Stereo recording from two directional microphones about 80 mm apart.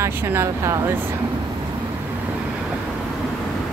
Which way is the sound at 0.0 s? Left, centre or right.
Right.